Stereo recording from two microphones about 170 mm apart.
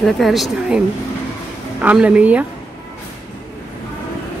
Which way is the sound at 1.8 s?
5° right (ahead or behind).